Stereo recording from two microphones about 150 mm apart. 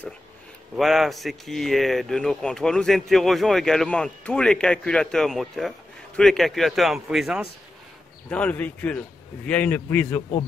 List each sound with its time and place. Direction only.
0.7 s speech: centre (ahead or behind)
8.3 s a man's voice: 10° left (ahead or behind)